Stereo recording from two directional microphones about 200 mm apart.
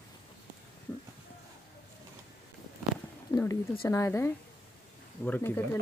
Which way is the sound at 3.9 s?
15° left (ahead or behind).